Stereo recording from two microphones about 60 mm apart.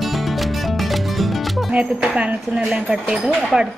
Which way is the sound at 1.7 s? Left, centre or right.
Centre.